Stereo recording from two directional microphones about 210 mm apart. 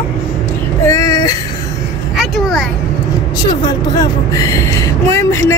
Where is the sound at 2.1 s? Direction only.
Centre (ahead or behind).